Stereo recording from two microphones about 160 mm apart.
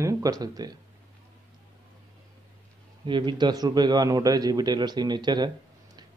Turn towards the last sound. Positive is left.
turn(degrees=-25)  # may be behind; listen again after turning